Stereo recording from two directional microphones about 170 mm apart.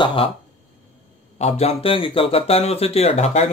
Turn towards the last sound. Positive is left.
turn(degrees=40)  # may be behind; listen again after turning